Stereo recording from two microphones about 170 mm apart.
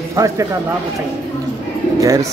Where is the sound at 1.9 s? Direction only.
20° right (ahead or behind).